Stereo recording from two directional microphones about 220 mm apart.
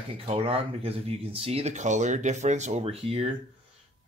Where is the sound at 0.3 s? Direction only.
25° right (ahead or behind).